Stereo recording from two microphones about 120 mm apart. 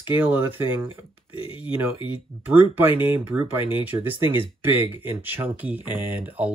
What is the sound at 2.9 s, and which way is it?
Speech, 50° left (ahead or behind).